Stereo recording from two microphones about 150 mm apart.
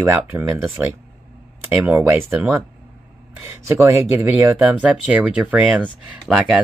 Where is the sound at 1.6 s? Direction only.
15° right (ahead or behind).